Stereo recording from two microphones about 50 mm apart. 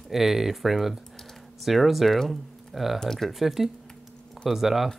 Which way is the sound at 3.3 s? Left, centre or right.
Centre.